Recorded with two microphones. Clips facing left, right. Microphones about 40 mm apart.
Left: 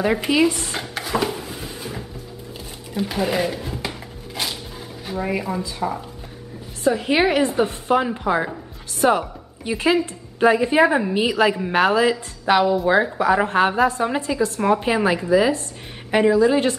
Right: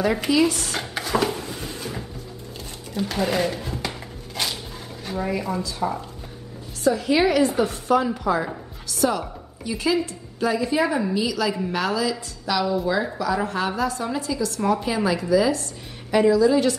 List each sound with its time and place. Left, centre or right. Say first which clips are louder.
0.0 s dishes: left 2 dB; centre
0.7 s drawer open or close: even; centre
2.9 s speech: left 1 dB; centre
4.4 s a sound: even; centre
5.0 s speech: left 1 dB; centre
5.8 s dishes: even; centre
6.8 s a woman's voice: left 1 dB; left